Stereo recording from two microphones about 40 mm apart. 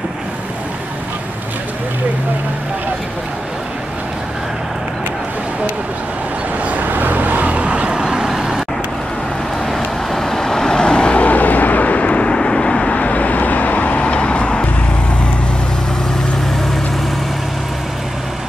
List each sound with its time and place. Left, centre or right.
6.8 s vehicle: right
8.0 s vehicle: centre
9.7 s vehicle: centre; by 11.1 s left
11.1 s vehicle: left